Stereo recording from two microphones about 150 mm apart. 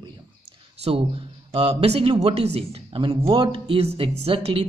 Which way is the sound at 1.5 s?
40° right (ahead or behind).